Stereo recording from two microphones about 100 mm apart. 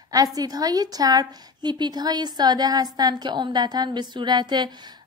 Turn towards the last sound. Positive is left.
turn(degrees=-45)  # may be behind; listen again after turning